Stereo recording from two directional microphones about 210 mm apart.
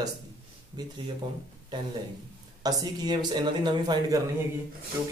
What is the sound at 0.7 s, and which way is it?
Speech, 20° right (ahead or behind).